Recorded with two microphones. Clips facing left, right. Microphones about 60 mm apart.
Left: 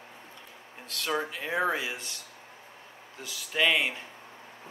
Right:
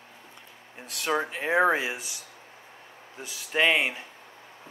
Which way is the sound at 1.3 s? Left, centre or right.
Right.